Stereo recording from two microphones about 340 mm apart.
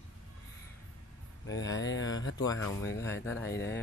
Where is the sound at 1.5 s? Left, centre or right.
Left.